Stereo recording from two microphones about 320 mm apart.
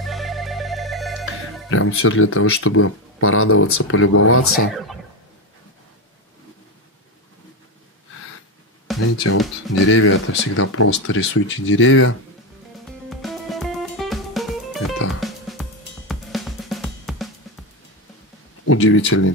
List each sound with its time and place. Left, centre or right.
0.0 s music: centre
1.7 s speech: left
8.9 s music: centre
9.3 s speech: left
13.1 s music: centre
18.7 s speech: left